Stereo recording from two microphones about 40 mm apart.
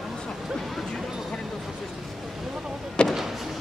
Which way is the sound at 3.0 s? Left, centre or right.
Left.